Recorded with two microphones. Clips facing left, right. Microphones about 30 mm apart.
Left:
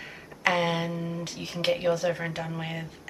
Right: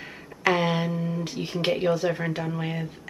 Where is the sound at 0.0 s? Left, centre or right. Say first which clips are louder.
Right 2 dB; centre.